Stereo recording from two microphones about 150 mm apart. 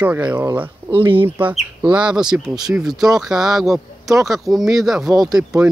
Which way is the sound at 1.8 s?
5° right (ahead or behind).